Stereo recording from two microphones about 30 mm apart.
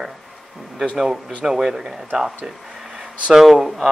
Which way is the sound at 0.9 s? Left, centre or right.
Centre.